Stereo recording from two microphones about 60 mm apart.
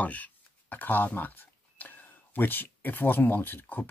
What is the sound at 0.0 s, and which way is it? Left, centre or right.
Speech, left.